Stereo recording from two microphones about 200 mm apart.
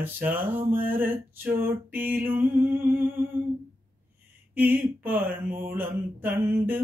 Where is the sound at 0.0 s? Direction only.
10° right (ahead or behind).